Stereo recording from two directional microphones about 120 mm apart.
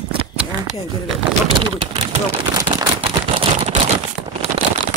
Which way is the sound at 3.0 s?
55° right (ahead or behind).